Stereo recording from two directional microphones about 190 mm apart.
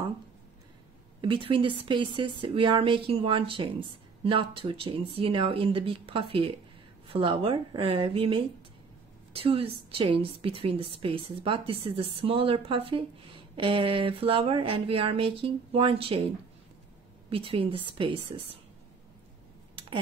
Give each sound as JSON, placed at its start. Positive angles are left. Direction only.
{"t": 1.2, "sound": "speech", "side_deg": -25}
{"t": 17.3, "sound": "speech", "side_deg": -30}